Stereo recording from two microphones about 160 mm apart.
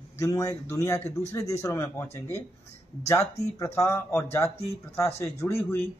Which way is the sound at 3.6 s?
15° left (ahead or behind).